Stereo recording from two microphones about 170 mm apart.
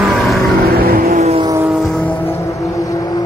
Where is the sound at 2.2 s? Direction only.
15° left (ahead or behind).